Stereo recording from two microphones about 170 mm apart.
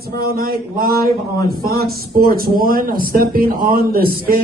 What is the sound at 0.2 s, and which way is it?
A man's voice, 65° right (ahead or behind).